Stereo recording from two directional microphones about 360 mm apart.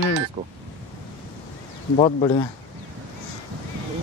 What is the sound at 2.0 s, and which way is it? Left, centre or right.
Speech, centre.